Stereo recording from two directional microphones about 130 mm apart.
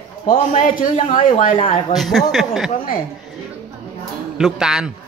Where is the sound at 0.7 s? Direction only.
85° left.